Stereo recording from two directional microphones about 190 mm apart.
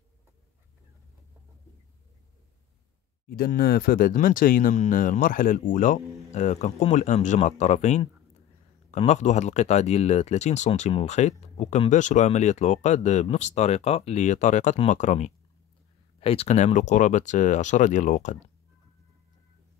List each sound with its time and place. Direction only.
3.3 s speech: 55° left (ahead or behind)